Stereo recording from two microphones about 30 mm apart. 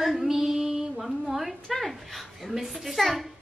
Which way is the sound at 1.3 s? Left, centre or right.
Centre.